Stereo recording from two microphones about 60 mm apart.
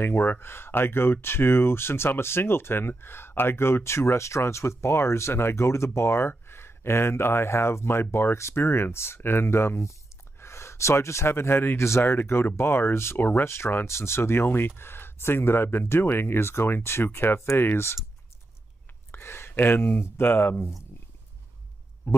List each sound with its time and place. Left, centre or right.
0.0 s speech: left
13.2 s speech: left
19.1 s speech: left
22.0 s speech: left